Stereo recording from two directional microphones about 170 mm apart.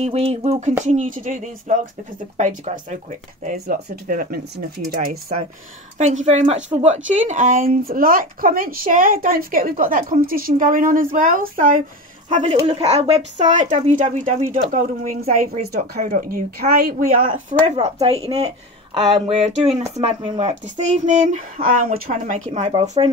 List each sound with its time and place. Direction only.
0.0 s a sound: 35° right (ahead or behind)
0.8 s speech: 50° right (ahead or behind)
3.4 s a woman's voice: 65° right (ahead or behind)
5.9 s speech: 40° right (ahead or behind)
12.3 s speech: 40° right (ahead or behind)
15.4 s a woman's voice: 65° right (ahead or behind)
16.0 s speech: 45° right (ahead or behind)
16.3 s a woman's voice: 60° right (ahead or behind)
17.5 s a sound: 40° right (ahead or behind)
19.1 s a sound: 35° right (ahead or behind)
20.0 s speech: 40° right (ahead or behind)